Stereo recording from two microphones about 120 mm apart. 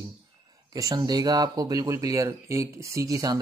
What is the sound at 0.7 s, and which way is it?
Speech, 35° right (ahead or behind).